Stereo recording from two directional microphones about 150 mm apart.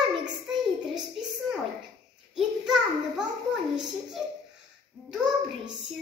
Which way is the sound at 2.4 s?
5° right (ahead or behind).